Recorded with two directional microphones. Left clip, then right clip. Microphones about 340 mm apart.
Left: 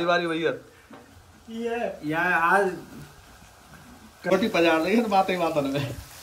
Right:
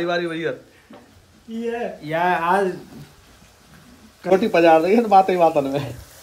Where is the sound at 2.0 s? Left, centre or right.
Right.